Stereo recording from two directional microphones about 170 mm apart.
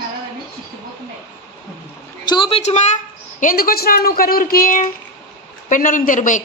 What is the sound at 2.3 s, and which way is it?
A woman's voice, 30° left (ahead or behind).